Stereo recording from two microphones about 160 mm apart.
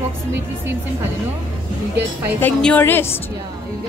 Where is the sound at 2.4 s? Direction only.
10° left (ahead or behind).